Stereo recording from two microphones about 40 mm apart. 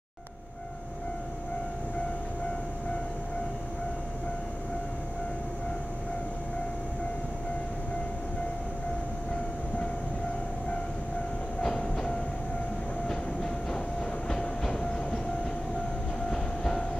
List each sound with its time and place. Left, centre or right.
11.6 s train: centre
16.3 s train: centre